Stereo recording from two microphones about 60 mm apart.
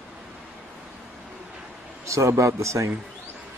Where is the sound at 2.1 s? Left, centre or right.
Right.